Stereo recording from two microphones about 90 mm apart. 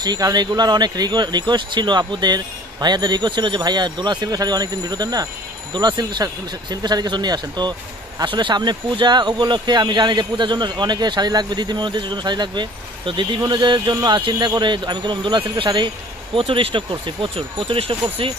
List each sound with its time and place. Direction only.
0.0 s speech: 50° right (ahead or behind)
16.3 s speech: 85° right